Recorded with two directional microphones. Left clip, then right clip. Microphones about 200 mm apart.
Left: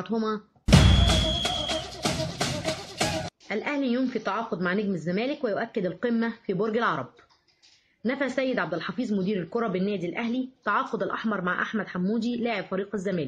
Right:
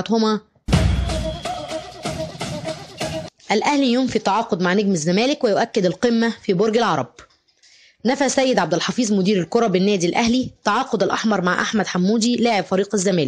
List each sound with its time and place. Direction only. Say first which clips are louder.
0.7 s music: left 2 dB; centre (ahead or behind)
3.4 s speech: right 12 dB; 40° right (ahead or behind)
8.1 s a woman's voice: right 9 dB; 45° right (ahead or behind)